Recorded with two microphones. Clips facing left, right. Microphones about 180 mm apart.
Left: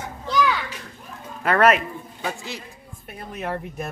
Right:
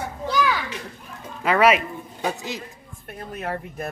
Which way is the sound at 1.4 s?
5° right (ahead or behind).